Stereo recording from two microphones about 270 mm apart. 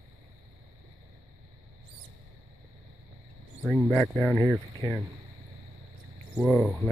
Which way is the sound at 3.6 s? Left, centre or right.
Centre.